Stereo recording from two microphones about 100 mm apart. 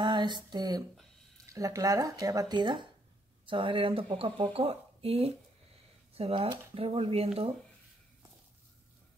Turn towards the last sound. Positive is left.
turn(degrees=-85)